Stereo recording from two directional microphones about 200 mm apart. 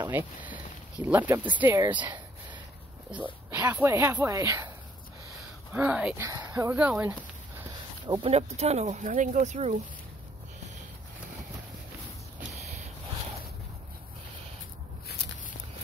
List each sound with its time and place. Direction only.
0.5 s speech: 10° right (ahead or behind)
3.2 s speech: 10° right (ahead or behind)
5.7 s speech: 5° right (ahead or behind)
8.1 s speech: 30° right (ahead or behind)